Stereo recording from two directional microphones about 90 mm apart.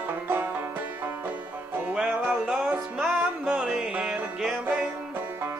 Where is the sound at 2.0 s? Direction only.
10° right (ahead or behind).